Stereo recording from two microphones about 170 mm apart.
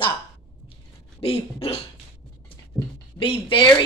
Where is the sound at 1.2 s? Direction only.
35° left (ahead or behind).